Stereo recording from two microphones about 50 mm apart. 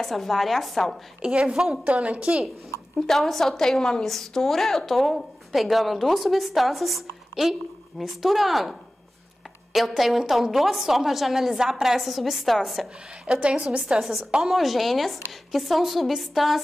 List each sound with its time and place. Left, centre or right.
0.0 s a woman's voice: centre
1.2 s a woman's voice: centre
1.9 s a woman's voice: right
3.1 s a woman's voice: centre
13.3 s a woman's voice: right
14.4 s a woman's voice: centre